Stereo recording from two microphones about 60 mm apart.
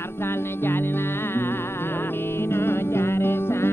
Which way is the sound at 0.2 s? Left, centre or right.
Left.